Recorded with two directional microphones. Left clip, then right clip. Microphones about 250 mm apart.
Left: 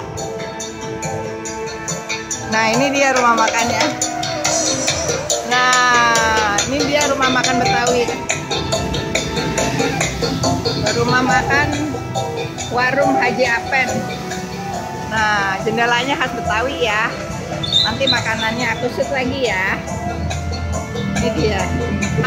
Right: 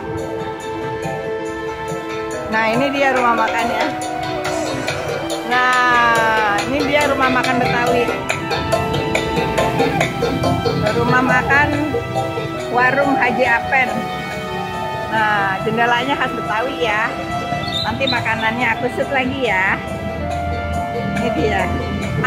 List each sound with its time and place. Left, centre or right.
2.5 s speech: centre
4.6 s music: left
5.5 s speech: centre
9.1 s music: right
11.1 s speech: centre
12.7 s speech: centre
15.1 s speech: centre
21.4 s speech: centre